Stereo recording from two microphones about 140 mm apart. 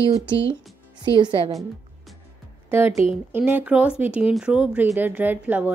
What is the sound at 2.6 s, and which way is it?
A woman's voice, 15° right (ahead or behind).